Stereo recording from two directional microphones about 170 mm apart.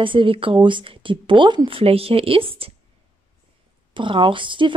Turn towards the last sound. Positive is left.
turn(degrees=-30)  # may be behind; listen again after turning